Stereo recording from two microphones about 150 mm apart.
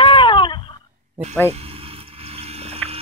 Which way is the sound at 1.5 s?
40° right (ahead or behind).